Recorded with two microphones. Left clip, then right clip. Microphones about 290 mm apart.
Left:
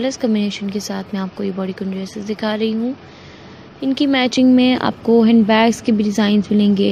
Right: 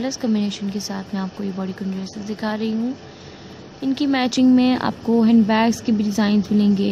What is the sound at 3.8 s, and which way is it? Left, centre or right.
Speech, centre.